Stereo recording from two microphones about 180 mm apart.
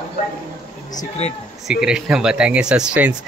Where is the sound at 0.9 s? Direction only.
35° left (ahead or behind).